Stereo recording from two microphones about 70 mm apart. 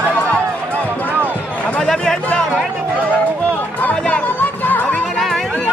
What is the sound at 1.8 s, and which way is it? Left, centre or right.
Chatter, centre.